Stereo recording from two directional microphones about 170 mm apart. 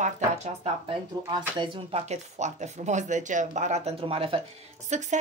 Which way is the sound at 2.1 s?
45° right (ahead or behind).